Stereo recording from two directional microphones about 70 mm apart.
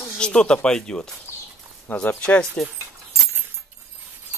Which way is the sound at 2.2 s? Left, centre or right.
Centre.